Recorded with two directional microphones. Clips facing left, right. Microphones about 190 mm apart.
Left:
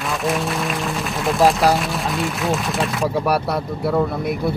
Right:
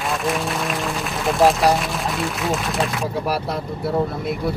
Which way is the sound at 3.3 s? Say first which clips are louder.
Left 4 dB; 60° left (ahead or behind).